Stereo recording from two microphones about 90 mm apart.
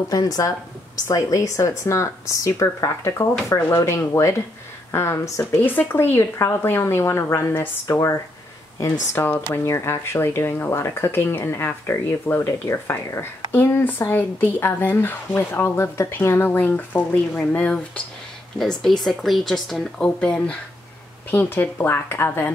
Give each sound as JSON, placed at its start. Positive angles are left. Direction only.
{"t": 0.1, "sound": "speech", "side_deg": 45}
{"t": 21.3, "sound": "speech", "side_deg": 20}